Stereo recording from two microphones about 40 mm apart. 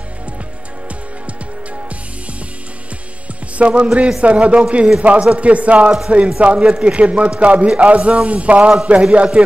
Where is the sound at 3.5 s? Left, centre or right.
Right.